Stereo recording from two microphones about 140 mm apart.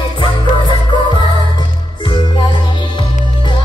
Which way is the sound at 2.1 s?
35° left (ahead or behind).